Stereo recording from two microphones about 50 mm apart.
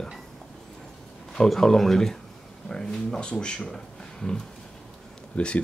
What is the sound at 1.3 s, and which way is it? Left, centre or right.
Speech, centre.